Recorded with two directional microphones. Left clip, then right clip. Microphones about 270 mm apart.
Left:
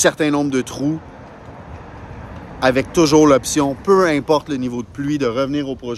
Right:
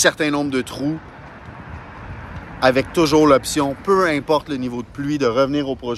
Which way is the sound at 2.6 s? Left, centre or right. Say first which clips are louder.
Left 1 dB; centre.